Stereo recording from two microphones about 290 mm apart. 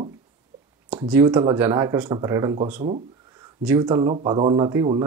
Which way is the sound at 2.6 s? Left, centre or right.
Right.